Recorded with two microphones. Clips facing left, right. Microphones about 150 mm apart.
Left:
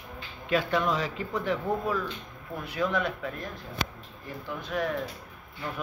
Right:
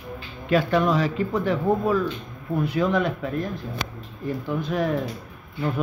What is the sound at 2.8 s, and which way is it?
Speech, 40° right (ahead or behind).